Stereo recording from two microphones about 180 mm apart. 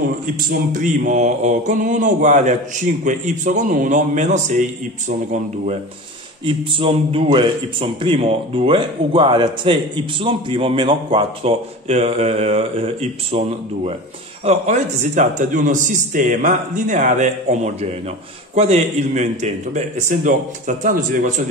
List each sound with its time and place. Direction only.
0.5 s a man's voice: 45° right (ahead or behind)
6.4 s a man's voice: 30° right (ahead or behind); by 21.3 s 50° right (ahead or behind)